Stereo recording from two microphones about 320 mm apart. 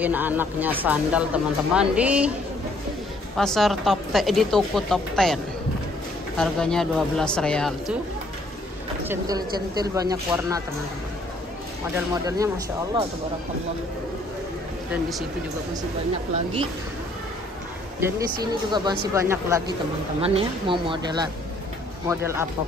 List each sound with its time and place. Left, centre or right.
0.0 s speech: centre
3.3 s speech: centre
9.0 s speech: centre
12.1 s speech: centre
14.9 s speech: centre
18.0 s speech: centre